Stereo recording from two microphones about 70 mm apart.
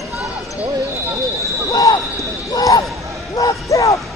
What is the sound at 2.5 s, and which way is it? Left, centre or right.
Basketball bounce, left.